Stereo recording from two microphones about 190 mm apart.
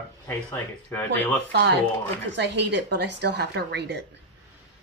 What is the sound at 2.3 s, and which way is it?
Speech, 65° right (ahead or behind).